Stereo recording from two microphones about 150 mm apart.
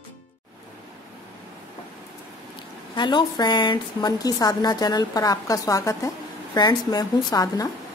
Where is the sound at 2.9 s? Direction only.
30° left (ahead or behind).